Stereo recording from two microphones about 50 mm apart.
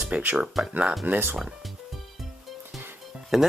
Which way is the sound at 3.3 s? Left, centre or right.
Centre.